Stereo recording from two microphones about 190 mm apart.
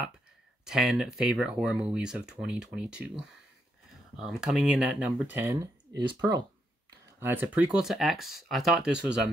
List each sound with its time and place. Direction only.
0.7 s speech: 5° right (ahead or behind)
5.9 s speech: 20° right (ahead or behind)
7.2 s speech: 10° right (ahead or behind)